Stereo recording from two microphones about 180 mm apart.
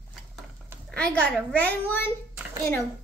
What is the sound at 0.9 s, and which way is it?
A child's voice, 5° left (ahead or behind).